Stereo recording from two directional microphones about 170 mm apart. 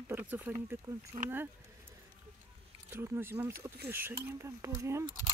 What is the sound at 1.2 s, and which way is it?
Speech, 45° right (ahead or behind).